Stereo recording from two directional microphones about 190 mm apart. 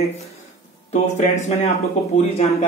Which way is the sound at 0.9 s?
40° left (ahead or behind).